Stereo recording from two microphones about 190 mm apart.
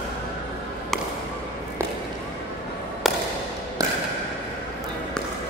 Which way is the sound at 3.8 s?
20° right (ahead or behind).